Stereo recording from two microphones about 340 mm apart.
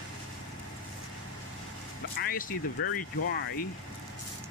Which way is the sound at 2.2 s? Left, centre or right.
Left.